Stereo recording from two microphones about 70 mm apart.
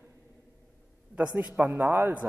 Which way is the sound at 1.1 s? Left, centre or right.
Right.